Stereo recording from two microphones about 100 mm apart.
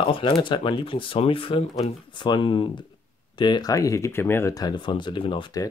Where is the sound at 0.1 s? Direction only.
60° left (ahead or behind).